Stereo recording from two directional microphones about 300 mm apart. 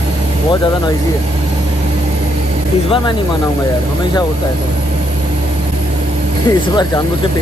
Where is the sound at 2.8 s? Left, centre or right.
Centre.